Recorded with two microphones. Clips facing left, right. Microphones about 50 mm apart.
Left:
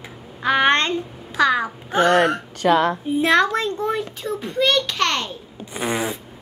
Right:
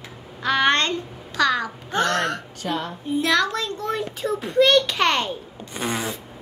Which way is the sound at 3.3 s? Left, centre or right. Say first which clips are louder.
Left 5 dB; left.